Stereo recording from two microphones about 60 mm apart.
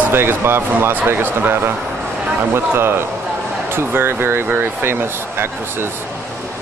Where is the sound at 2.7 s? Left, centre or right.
Right.